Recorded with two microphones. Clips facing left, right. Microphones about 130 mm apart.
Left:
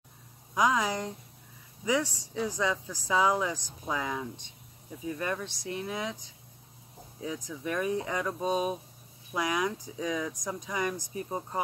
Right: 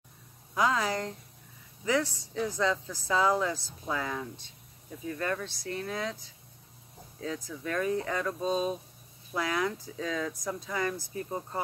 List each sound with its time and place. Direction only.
0.6 s speech: 15° left (ahead or behind)